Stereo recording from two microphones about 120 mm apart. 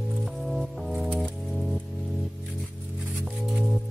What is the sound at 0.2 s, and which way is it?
Music, centre (ahead or behind).